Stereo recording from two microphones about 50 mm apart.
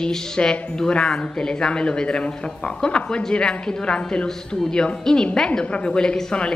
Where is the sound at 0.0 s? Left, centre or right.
Centre.